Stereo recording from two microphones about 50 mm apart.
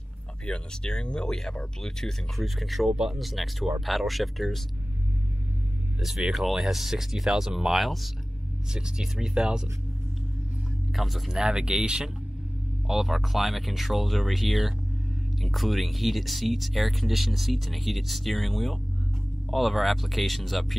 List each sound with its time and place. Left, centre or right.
0.5 s speech: centre
5.9 s speech: centre
8.7 s speech: centre
10.9 s speech: centre
11.3 s speech: centre